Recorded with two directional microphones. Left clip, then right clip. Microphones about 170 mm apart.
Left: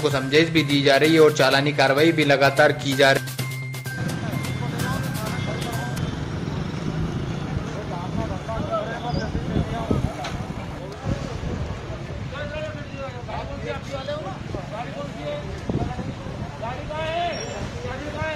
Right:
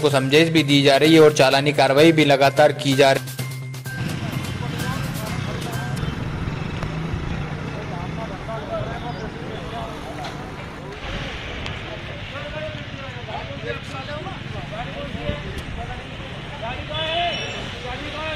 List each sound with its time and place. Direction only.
0.0 s speech: 25° right (ahead or behind)